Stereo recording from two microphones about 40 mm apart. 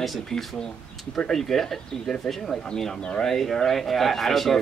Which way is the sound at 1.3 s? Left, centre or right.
Centre.